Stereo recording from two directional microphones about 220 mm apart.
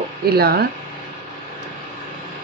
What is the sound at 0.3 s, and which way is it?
Speech, 45° right (ahead or behind).